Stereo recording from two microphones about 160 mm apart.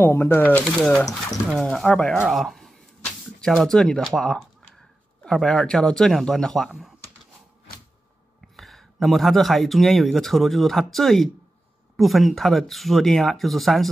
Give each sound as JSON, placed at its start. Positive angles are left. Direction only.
{"t": 0.0, "sound": "speech", "side_deg": 15}
{"t": 0.9, "sound": "speech", "side_deg": 20}
{"t": 1.5, "sound": "speech", "side_deg": 0}
{"t": 8.5, "sound": "speech", "side_deg": 0}